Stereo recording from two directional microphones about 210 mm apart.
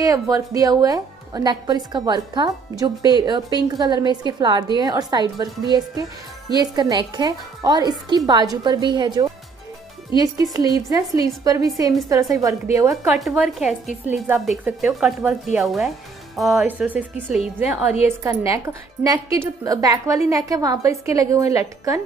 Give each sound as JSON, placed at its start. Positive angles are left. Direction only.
{"t": 0.0, "sound": "a woman's voice", "side_deg": -15}
{"t": 10.4, "sound": "a woman's voice", "side_deg": -15}
{"t": 12.9, "sound": "a woman's voice", "side_deg": 0}